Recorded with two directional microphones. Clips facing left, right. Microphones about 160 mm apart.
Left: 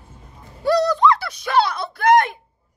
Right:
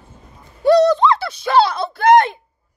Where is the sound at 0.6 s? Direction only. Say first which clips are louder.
Right 5 dB; 25° right (ahead or behind).